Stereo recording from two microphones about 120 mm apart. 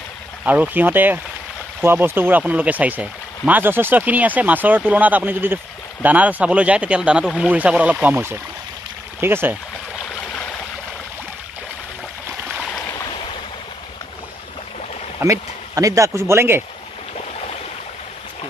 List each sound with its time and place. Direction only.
0.5 s speech: 15° right (ahead or behind)
15.1 s speech: 25° right (ahead or behind)